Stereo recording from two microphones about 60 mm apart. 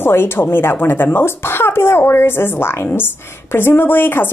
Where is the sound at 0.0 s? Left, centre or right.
Left.